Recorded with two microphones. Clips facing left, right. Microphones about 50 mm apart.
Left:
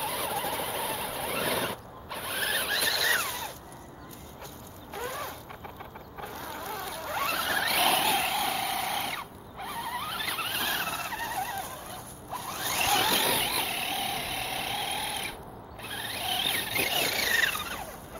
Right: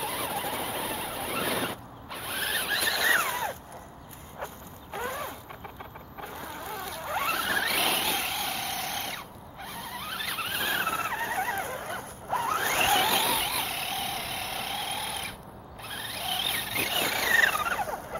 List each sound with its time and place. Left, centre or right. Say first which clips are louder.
0.0 s vehicle: even; centre
3.2 s a sound: right 5 dB; right
4.9 s zipper: right 2 dB; centre
6.2 s vehicle: left 1 dB; centre
10.9 s vehicle: right 4 dB; right
13.0 s vehicle: right 1 dB; centre
17.0 s vehicle: right 6 dB; centre
17.6 s a sound: right 8 dB; right